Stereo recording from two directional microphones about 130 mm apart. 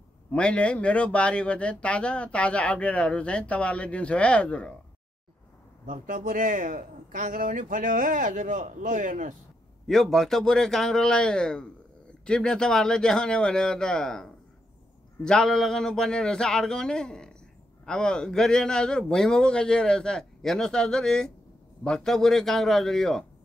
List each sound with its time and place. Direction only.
0.3 s speech: 10° left (ahead or behind)
5.9 s a man's voice: 85° right
9.8 s a man's voice: centre (ahead or behind)